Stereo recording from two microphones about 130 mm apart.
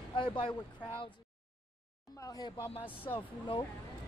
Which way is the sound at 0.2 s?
40° left (ahead or behind).